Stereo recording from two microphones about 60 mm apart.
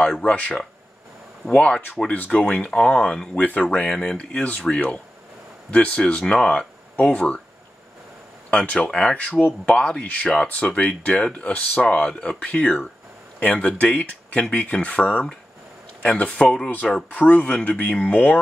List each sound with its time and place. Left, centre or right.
0.2 s speech: left
4.4 s speech: left
8.5 s speech: centre
9.1 s speech: left
17.1 s speech: left